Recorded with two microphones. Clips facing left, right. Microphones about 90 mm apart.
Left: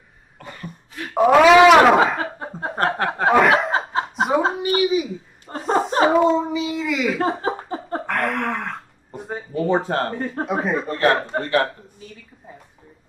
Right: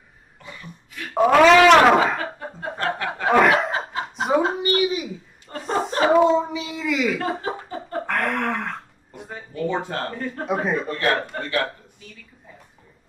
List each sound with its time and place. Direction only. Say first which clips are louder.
0.4 s cough: left 4 dB; 50° left (ahead or behind)
1.1 s speech: left 2 dB; 5° left (ahead or behind)
2.1 s chuckle: left 2 dB; 30° left (ahead or behind)
3.3 s chuckle: even; centre (ahead or behind)
3.7 s chuckle: left 5 dB; 35° left (ahead or behind)
4.6 s a sound: left 2 dB; centre (ahead or behind)
5.5 s chuckle: left 5 dB; 40° left (ahead or behind)
6.0 s a sound: right 3 dB; centre (ahead or behind)
7.2 s a sound: left 4 dB; 35° left (ahead or behind)
8.1 s gasp: left 1 dB; centre (ahead or behind)
9.3 s a sound: left 5 dB; 30° left (ahead or behind)
10.1 s speech: left 3 dB; 30° left (ahead or behind)
10.4 s speech: even; centre (ahead or behind)
10.9 s a man's voice: left 4 dB; 35° left (ahead or behind)